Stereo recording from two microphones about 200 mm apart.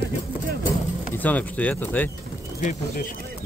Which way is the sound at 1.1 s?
10° left (ahead or behind).